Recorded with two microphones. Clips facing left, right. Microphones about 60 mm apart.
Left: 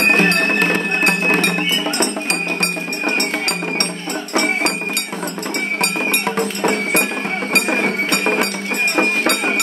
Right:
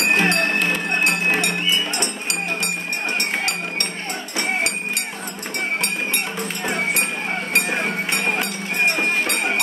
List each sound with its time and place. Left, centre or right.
0.0 s music: left
2.6 s music: left
5.8 s music: left
7.5 s a sound: left
8.9 s music: left